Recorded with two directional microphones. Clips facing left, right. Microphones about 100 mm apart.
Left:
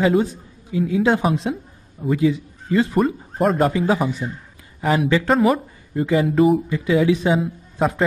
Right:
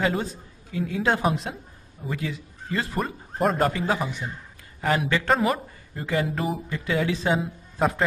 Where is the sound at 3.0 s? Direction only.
Centre (ahead or behind).